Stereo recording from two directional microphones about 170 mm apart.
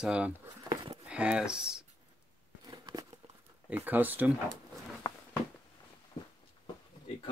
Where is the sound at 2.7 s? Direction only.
20° right (ahead or behind).